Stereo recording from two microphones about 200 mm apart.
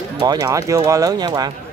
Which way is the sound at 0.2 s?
20° right (ahead or behind).